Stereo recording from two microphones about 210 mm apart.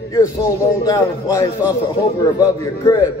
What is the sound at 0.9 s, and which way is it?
A man's voice, 15° left (ahead or behind).